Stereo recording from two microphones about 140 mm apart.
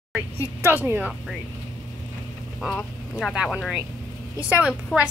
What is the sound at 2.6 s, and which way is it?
A woman's voice, 5° right (ahead or behind).